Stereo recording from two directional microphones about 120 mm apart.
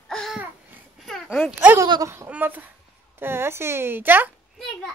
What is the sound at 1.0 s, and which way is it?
Dog, centre (ahead or behind).